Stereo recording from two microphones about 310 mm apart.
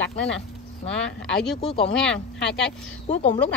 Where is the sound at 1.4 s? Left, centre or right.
Centre.